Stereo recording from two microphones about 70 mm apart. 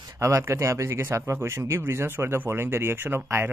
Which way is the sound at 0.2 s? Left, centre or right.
Right.